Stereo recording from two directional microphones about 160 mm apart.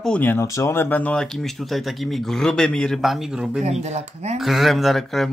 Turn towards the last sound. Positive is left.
turn(degrees=0)  # may be behind; listen again after turning